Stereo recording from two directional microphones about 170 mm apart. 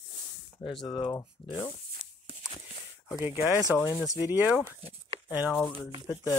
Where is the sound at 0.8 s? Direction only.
25° left (ahead or behind).